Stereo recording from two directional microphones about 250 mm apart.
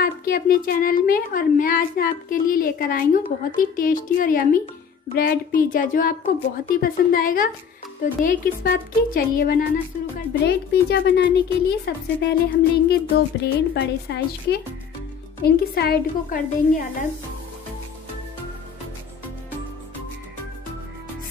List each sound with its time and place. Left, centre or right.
0.0 s a woman's voice: left